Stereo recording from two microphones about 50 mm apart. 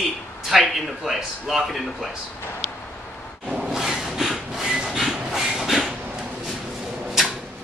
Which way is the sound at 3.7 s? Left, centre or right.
Centre.